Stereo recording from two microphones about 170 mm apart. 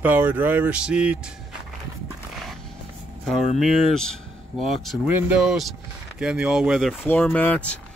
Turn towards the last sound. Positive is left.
turn(degrees=10)  # may be behind; listen again after turning